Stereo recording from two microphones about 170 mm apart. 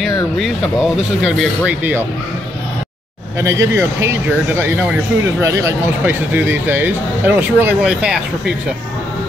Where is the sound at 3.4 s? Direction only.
15° right (ahead or behind).